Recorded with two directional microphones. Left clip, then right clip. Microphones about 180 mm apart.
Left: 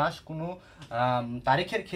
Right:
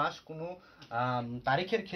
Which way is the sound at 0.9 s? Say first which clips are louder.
Left 5 dB; 20° right (ahead or behind).